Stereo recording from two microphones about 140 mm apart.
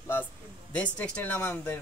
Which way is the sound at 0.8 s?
10° left (ahead or behind).